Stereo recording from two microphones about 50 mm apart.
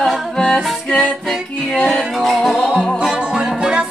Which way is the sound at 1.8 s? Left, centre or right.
Centre.